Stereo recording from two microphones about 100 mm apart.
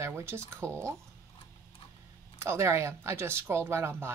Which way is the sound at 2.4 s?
25° right (ahead or behind).